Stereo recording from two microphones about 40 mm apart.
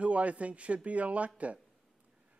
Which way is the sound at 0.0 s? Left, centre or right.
Right.